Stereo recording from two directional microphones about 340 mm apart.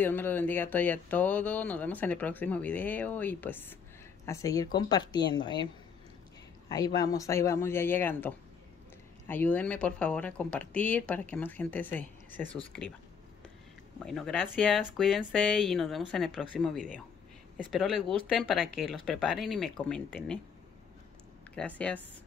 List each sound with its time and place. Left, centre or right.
0.0 s speech: centre
6.7 s speech: centre
14.0 s speech: centre
21.5 s speech: centre